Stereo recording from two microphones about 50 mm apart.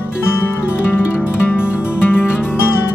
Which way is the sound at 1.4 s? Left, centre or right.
Left.